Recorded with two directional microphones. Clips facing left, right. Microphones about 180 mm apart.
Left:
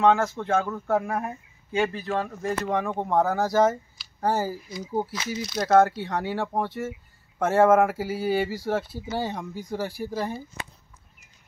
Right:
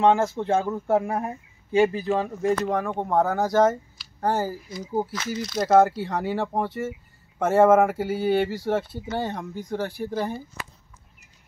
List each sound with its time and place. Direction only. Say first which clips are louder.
0.0 s speech: right 1 dB; 20° right (ahead or behind)
2.4 s speech: right 4 dB; centre (ahead or behind)